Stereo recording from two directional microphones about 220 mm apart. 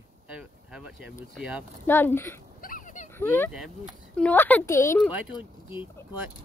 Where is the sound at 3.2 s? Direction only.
10° left (ahead or behind).